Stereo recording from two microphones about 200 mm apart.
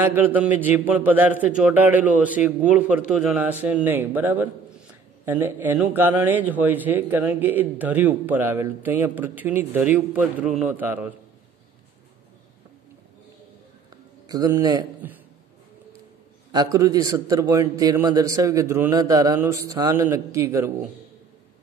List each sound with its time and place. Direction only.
0.0 s a man's voice: 10° right (ahead or behind)
14.2 s a man's voice: 20° right (ahead or behind)
16.5 s a man's voice: 15° right (ahead or behind)